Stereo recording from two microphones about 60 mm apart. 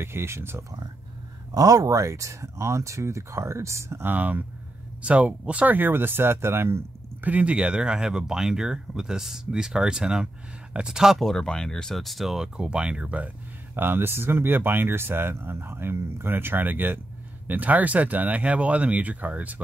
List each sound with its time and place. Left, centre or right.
0.0 s speech: right
1.5 s speech: right
4.0 s speech: right
5.8 s speech: right
7.2 s speech: right
11.1 s speech: centre
13.7 s speech: right